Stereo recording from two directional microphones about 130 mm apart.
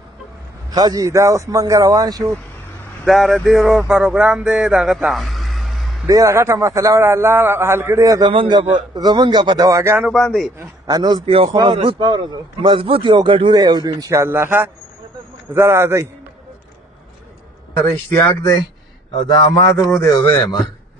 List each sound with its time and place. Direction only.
0.7 s a man's voice: 30° right (ahead or behind)
3.1 s music: centre (ahead or behind)
6.0 s a man's voice: 25° right (ahead or behind)
8.3 s speech: 40° right (ahead or behind)
9.7 s a man's voice: 20° right (ahead or behind)
10.1 s music: centre (ahead or behind)
10.9 s a man's voice: 30° right (ahead or behind)
17.8 s speech: 20° left (ahead or behind)
19.3 s a man's voice: 35° left (ahead or behind)